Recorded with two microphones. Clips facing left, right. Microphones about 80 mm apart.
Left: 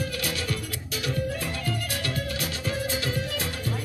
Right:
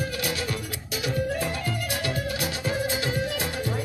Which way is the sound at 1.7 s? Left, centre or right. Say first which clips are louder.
Right 2 dB; centre.